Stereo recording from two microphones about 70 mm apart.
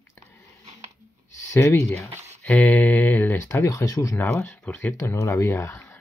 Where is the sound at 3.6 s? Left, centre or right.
Left.